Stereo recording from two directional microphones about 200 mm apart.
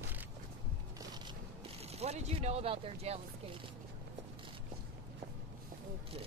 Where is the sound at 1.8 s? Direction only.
30° right (ahead or behind).